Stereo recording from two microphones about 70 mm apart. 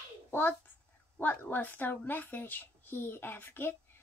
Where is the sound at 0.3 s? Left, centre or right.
Left.